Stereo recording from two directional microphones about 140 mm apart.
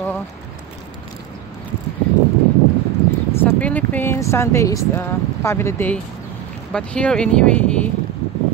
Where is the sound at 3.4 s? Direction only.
10° left (ahead or behind).